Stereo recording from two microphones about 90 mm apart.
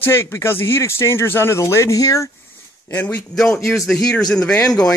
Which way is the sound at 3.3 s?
5° left (ahead or behind).